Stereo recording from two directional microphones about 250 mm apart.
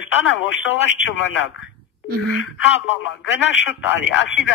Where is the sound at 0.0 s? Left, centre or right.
Left.